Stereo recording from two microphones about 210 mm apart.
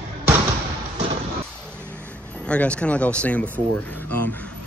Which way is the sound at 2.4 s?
5° left (ahead or behind).